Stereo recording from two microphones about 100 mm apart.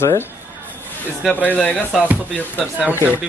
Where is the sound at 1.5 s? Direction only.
15° left (ahead or behind).